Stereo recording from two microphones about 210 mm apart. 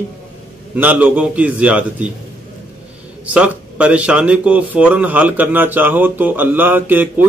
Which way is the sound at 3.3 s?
5° right (ahead or behind).